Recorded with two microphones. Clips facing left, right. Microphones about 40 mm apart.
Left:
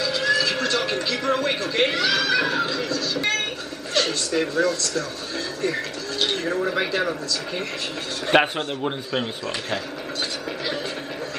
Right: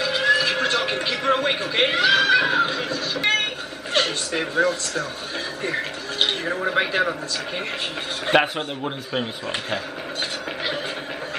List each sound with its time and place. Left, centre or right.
0.0 s a sound: right
4.0 s speech: right
8.3 s a man's voice: centre